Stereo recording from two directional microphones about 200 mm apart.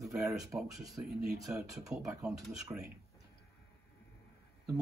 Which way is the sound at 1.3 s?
15° right (ahead or behind).